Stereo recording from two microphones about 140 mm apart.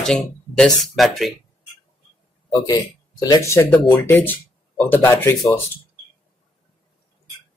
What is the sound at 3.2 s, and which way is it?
Speech, 25° left (ahead or behind).